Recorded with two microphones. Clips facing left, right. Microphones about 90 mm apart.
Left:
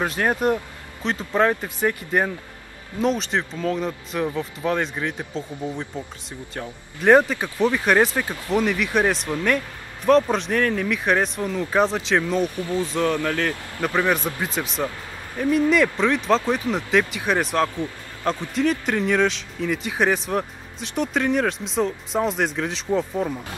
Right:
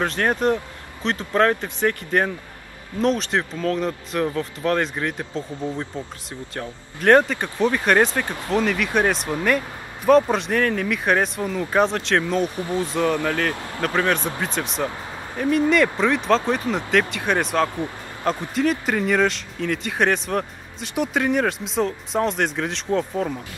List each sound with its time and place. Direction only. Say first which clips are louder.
0.0 s speech: right 1 dB; 5° left (ahead or behind)
6.5 s speech: even; 5° left (ahead or behind)
12.5 s speech: even; 25° right (ahead or behind)
13.0 s speech: right 2 dB; 10° right (ahead or behind)
13.7 s speech: even; 5° left (ahead or behind)